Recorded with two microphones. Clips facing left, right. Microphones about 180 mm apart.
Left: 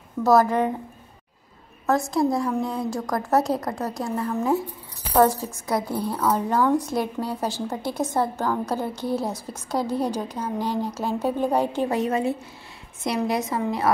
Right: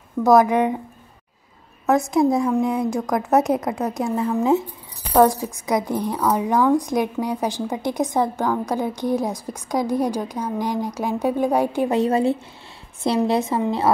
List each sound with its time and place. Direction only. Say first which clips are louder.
0.2 s a woman's voice: right 3 dB; 15° right (ahead or behind)
1.9 s a woman's voice: right 4 dB; 20° right (ahead or behind)
11.9 s a woman's voice: right 5 dB; 30° right (ahead or behind)